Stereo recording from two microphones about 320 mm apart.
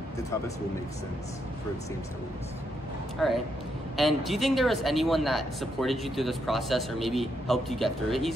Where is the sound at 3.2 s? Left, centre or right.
Centre.